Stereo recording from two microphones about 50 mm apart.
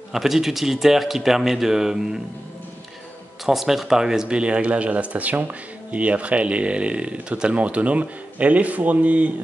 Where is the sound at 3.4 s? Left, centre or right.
Centre.